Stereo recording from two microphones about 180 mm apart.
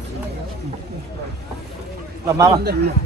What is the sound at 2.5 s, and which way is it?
Speech, 65° right (ahead or behind).